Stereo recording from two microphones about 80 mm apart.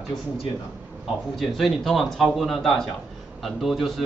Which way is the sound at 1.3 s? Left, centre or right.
Centre.